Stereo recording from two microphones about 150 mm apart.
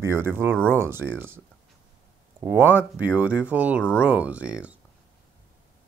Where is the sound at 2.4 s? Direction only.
15° right (ahead or behind).